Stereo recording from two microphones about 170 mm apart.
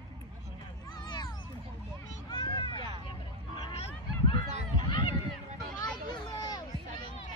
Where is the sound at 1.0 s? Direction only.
25° left (ahead or behind).